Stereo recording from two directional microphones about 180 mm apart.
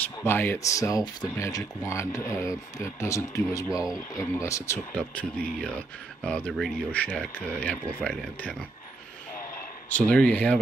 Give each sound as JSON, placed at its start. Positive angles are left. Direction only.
{"t": 0.0, "sound": "speech", "side_deg": 10}
{"t": 5.6, "sound": "speech", "side_deg": 5}
{"t": 9.8, "sound": "speech", "side_deg": 5}